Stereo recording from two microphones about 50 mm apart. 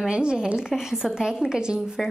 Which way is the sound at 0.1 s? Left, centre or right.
Centre.